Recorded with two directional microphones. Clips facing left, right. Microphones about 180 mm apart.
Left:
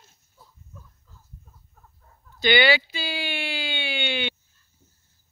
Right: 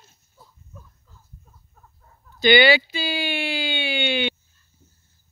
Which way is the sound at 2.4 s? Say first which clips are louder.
Right 4 dB; 10° right (ahead or behind).